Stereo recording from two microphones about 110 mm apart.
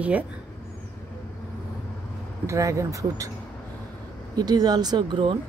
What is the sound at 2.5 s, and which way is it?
Speech, 30° right (ahead or behind).